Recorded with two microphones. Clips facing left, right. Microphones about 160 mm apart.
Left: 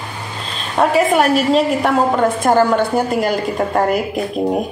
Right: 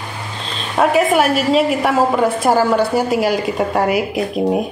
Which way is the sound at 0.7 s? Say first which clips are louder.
Even; centre (ahead or behind).